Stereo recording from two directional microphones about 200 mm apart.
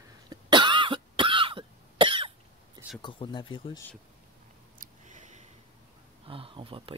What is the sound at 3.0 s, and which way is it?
Speech, 25° left (ahead or behind).